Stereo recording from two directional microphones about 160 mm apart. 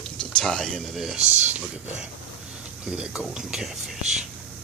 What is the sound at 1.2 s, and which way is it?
Speech, 45° right (ahead or behind).